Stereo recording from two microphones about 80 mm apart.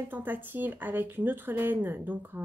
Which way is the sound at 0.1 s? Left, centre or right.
Right.